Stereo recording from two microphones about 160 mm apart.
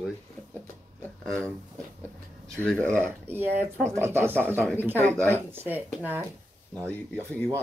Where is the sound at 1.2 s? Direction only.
Centre (ahead or behind).